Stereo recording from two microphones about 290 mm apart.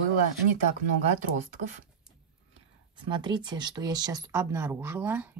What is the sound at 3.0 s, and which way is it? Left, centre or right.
Speech, centre.